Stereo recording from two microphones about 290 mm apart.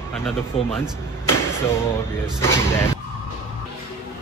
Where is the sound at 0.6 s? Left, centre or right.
Left.